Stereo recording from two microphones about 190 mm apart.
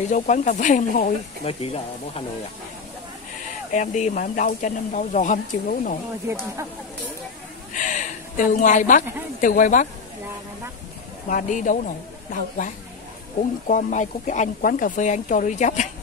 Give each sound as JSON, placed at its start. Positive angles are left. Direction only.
{"t": 0.1, "sound": "speech", "side_deg": 40}
{"t": 3.7, "sound": "speech", "side_deg": 40}
{"t": 6.2, "sound": "speech", "side_deg": -15}
{"t": 7.7, "sound": "a sound", "side_deg": 40}
{"t": 9.4, "sound": "a man's voice", "side_deg": 45}
{"t": 11.2, "sound": "a man's voice", "side_deg": 40}